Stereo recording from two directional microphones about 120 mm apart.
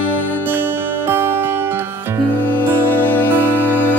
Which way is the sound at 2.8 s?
15° left (ahead or behind).